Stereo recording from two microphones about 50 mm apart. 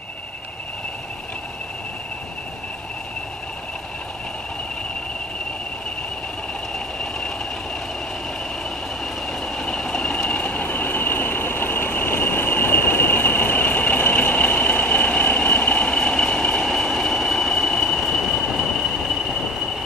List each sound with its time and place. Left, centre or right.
7.0 s train: centre
9.6 s train: centre
10.3 s train: left
10.6 s train: left
15.9 s train: centre